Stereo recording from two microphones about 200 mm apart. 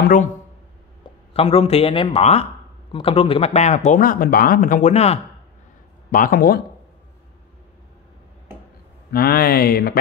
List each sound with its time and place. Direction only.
0.0 s speech: 40° left (ahead or behind)
1.3 s speech: 30° left (ahead or behind)
6.1 s speech: 45° left (ahead or behind)
9.1 s speech: 50° left (ahead or behind)